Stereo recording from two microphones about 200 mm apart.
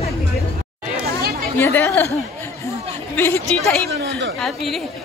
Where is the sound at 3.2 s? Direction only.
5° left (ahead or behind).